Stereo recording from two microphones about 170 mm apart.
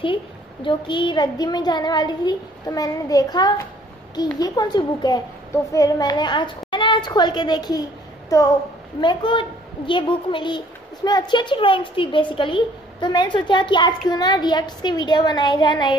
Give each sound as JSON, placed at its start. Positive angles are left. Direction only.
{"t": 0.0, "sound": "a woman's voice", "side_deg": 30}